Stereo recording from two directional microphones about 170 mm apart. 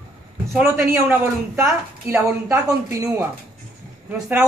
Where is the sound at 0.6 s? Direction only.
15° right (ahead or behind).